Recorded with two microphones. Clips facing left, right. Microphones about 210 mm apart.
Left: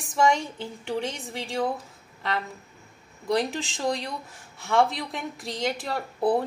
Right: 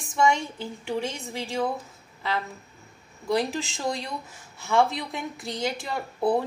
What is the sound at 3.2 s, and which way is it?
Speech, centre (ahead or behind).